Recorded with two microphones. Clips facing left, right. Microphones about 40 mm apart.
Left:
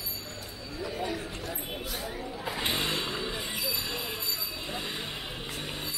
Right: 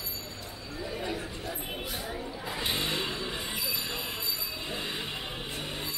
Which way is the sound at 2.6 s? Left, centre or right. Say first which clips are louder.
Left 1 dB; centre.